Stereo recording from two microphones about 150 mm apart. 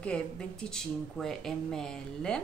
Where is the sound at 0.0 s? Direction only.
5° left (ahead or behind).